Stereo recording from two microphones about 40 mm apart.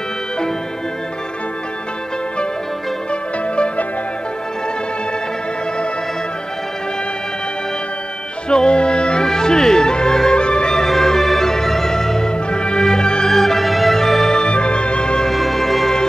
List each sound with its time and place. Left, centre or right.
3.1 s music: left
8.5 s music: left
13.3 s organ: centre
14.3 s music: left
15.2 s music: centre